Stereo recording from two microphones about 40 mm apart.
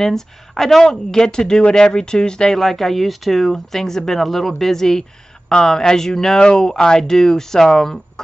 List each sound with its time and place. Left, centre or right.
0.0 s speech: centre
2.5 s speech: centre